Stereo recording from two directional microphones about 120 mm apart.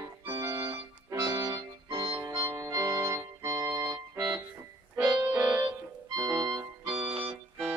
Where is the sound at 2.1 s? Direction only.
20° right (ahead or behind).